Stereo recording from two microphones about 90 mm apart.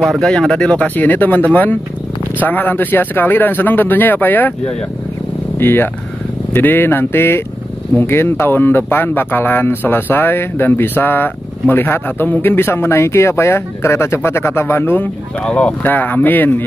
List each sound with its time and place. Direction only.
0.0 s speech: 5° left (ahead or behind)
5.6 s speech: 25° left (ahead or behind)
15.4 s speech: 15° left (ahead or behind)